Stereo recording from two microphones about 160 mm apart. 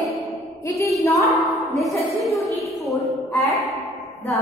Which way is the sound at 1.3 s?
Centre (ahead or behind).